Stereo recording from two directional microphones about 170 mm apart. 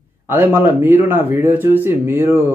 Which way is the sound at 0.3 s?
10° right (ahead or behind).